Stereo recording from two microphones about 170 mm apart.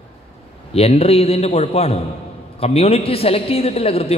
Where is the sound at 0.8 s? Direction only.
35° left (ahead or behind).